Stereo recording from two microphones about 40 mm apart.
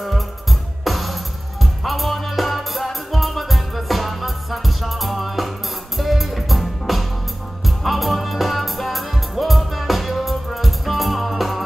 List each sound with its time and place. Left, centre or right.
0.0 s music: centre